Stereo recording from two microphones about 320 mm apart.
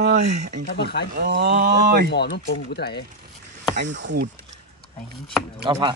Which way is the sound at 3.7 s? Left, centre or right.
Right.